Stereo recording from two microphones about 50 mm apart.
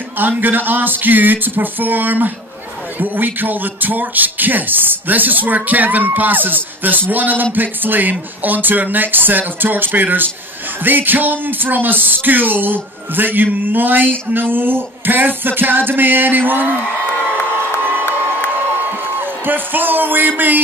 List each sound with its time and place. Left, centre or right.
0.2 s a man's voice: right
14.5 s music: right
17.2 s crowd: left
18.9 s a sound: right